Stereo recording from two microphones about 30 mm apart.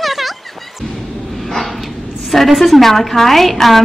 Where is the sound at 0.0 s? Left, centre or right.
Centre.